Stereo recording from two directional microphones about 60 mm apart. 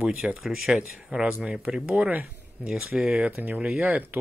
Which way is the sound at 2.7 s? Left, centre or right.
Centre.